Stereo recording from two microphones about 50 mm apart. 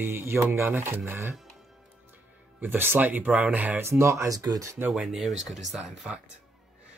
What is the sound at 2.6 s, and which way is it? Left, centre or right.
Speech, right.